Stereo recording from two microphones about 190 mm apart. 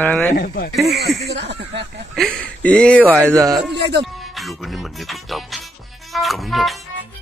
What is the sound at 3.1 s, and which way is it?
Speech, 15° right (ahead or behind).